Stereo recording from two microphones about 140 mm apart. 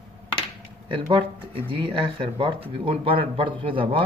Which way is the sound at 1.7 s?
40° right (ahead or behind).